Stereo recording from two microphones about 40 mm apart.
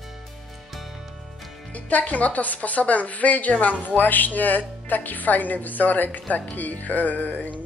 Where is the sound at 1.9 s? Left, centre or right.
Left.